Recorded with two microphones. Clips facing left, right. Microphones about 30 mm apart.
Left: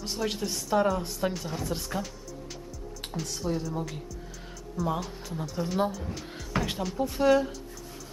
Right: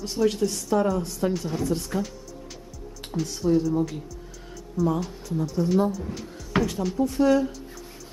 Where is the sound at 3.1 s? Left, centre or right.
Centre.